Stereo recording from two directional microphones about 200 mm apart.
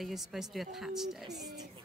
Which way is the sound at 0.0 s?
Centre (ahead or behind).